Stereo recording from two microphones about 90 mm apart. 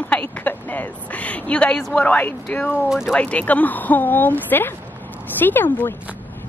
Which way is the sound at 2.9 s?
5° right (ahead or behind).